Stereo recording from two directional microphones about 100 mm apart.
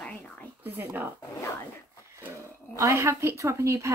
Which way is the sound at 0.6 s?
20° right (ahead or behind).